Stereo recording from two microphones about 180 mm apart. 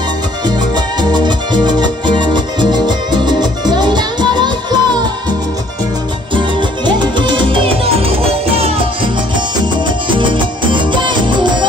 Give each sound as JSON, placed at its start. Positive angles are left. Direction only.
{"t": 0.7, "sound": "music", "side_deg": -25}
{"t": 6.3, "sound": "music", "side_deg": -25}